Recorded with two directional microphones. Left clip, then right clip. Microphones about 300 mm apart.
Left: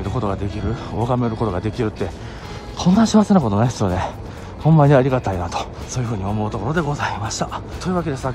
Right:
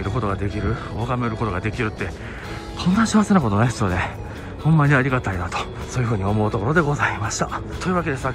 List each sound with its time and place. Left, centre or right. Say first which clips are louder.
0.0 s a man's voice: left 1 dB; centre